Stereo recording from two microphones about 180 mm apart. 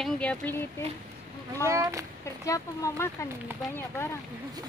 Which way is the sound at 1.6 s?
15° right (ahead or behind).